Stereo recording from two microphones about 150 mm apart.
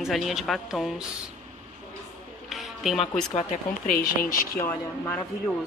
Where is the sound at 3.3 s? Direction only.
65° left (ahead or behind).